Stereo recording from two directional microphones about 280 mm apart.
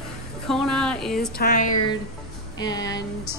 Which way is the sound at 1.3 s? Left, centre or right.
Left.